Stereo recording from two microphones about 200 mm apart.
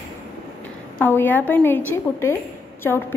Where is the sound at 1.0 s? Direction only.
10° left (ahead or behind).